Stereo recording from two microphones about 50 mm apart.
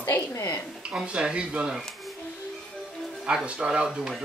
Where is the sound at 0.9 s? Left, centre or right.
Centre.